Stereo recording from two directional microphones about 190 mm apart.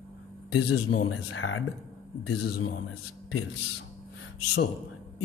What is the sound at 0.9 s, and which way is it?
Speech, 90° left.